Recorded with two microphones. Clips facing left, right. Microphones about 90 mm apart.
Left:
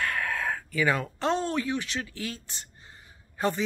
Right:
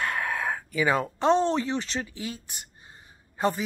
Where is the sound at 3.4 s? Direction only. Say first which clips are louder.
Right 2 dB; 20° right (ahead or behind).